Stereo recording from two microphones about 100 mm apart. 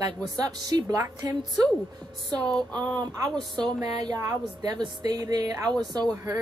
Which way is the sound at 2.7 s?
45° right (ahead or behind).